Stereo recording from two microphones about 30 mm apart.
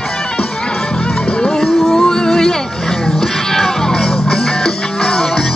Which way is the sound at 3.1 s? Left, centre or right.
Centre.